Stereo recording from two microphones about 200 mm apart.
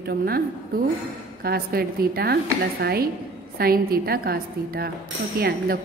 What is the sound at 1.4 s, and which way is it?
A woman's voice, 50° right (ahead or behind).